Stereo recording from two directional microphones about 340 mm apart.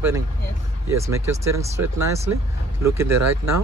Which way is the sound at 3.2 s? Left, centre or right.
Right.